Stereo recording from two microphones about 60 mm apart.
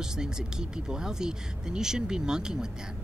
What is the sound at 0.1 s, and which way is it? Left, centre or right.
Speech, centre.